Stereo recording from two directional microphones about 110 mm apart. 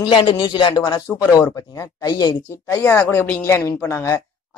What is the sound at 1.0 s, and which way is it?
Speech, 25° left (ahead or behind).